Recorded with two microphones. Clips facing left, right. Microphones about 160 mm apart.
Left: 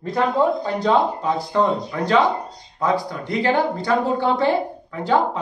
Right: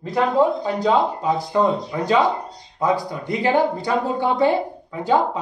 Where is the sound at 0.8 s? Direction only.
10° right (ahead or behind).